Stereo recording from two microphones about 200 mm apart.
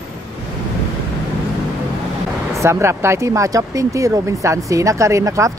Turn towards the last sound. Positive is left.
turn(degrees=-15)  # may be behind; listen again after turning